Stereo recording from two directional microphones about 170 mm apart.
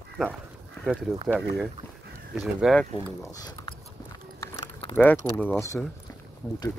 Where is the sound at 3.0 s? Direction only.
30° left (ahead or behind).